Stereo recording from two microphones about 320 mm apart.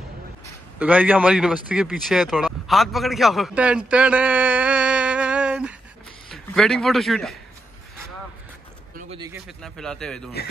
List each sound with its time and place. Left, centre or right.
0.7 s a man's voice: centre
8.9 s a sound: centre
9.3 s speech: centre